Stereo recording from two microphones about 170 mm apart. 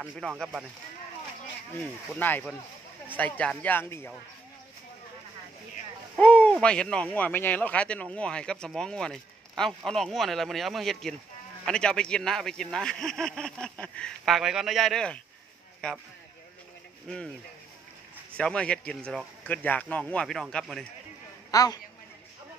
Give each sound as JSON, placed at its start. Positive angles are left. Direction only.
{"t": 0.0, "sound": "speech", "side_deg": -5}
{"t": 1.8, "sound": "speech", "side_deg": 10}
{"t": 6.1, "sound": "speech", "side_deg": 10}
{"t": 18.3, "sound": "speech", "side_deg": 5}
{"t": 21.5, "sound": "a man's voice", "side_deg": 20}